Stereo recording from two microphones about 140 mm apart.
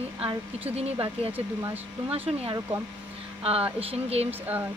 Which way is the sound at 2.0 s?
40° right (ahead or behind).